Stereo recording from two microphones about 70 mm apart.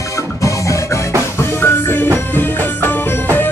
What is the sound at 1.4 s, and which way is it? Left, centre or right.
Music, left.